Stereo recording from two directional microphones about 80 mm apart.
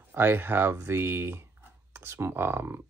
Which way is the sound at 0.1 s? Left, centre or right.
Right.